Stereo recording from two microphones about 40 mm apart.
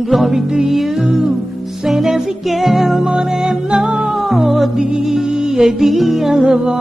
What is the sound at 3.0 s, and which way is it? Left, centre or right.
Music, centre.